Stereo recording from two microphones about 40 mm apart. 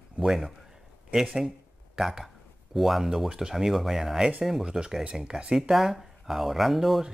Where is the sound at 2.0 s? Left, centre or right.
Centre.